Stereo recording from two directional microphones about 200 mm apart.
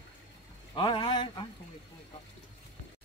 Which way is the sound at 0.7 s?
25° left (ahead or behind).